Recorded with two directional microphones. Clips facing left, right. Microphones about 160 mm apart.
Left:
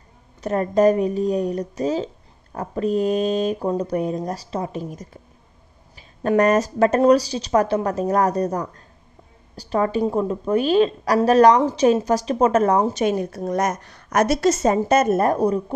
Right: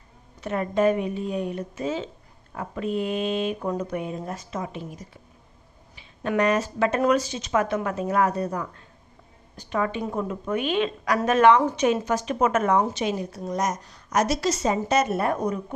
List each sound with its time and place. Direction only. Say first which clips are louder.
0.4 s a woman's voice: left 5 dB; 40° left (ahead or behind)
13.0 s a woman's voice: left 6 dB; 55° left (ahead or behind); by 15.6 s 35° left (ahead or behind)